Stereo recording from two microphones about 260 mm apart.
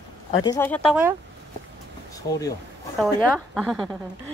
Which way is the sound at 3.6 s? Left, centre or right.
Centre.